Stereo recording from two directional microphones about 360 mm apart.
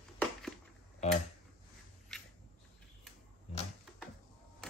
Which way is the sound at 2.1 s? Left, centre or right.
Centre.